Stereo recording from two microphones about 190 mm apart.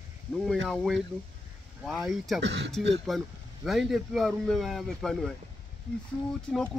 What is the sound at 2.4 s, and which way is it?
Speech, 65° right (ahead or behind).